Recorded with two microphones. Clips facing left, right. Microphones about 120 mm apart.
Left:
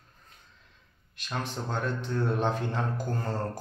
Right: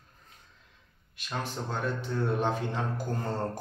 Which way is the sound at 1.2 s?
5° right (ahead or behind).